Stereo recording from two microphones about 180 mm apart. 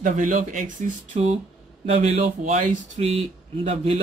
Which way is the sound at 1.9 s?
40° right (ahead or behind).